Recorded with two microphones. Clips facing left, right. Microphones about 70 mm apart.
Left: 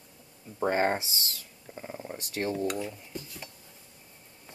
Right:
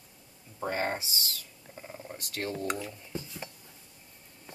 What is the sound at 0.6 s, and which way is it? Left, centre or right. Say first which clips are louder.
Speech: left 5 dB; left.